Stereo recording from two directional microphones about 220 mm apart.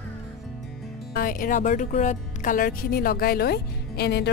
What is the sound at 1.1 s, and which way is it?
Speech, 40° left (ahead or behind).